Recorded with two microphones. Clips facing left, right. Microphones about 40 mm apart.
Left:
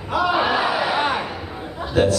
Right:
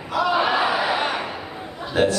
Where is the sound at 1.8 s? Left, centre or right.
Centre.